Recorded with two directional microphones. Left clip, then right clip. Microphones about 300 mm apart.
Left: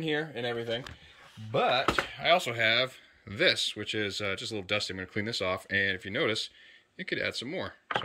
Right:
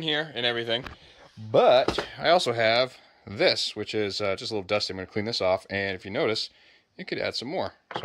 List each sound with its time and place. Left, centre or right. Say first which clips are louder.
0.0 s speech: right 5 dB; centre
0.6 s speech: right 5 dB; centre